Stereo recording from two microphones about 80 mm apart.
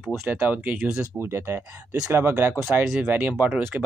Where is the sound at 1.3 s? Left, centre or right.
Right.